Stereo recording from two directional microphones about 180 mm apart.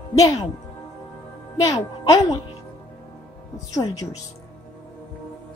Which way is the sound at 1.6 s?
20° left (ahead or behind).